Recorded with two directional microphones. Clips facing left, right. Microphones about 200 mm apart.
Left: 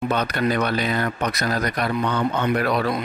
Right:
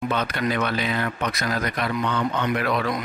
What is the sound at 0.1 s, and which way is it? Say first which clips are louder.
Speech: left 4 dB; 40° left (ahead or behind).